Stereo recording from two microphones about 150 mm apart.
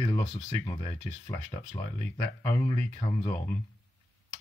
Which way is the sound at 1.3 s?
30° left (ahead or behind).